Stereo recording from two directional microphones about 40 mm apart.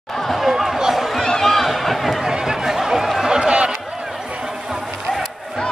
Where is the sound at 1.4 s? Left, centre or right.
Centre.